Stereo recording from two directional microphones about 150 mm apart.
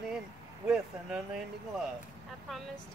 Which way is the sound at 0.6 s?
5° right (ahead or behind).